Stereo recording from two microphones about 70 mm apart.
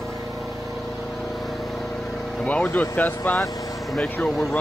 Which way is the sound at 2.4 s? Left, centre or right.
Left.